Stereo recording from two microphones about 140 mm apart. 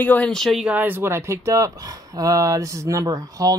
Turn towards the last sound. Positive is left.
turn(degrees=-25)  # may be behind; listen again after turning